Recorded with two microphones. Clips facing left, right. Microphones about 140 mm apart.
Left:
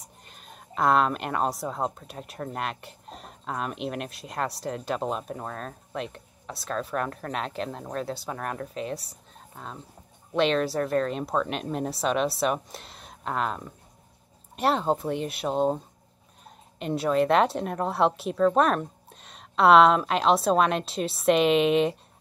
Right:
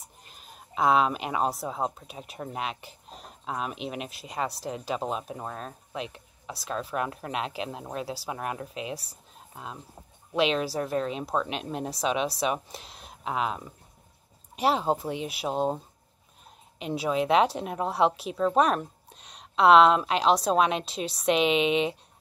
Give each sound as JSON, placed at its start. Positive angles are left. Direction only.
{"t": 0.0, "sound": "speech", "side_deg": 0}